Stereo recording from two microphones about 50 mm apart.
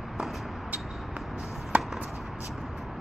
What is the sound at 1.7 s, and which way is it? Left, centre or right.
Chop, right.